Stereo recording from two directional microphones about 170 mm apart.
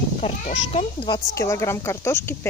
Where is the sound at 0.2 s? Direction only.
35° left (ahead or behind).